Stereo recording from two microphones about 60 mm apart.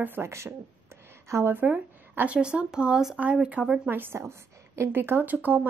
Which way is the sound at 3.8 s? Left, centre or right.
Right.